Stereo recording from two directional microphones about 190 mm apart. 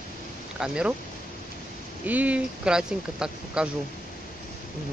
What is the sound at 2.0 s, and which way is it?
Speech, 10° right (ahead or behind).